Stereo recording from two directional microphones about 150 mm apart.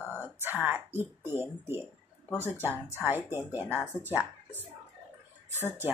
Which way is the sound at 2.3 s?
15° left (ahead or behind).